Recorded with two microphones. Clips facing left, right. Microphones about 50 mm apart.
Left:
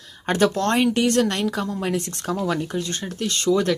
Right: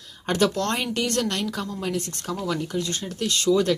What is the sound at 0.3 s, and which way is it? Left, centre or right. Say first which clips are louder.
Speech: left 3 dB; centre.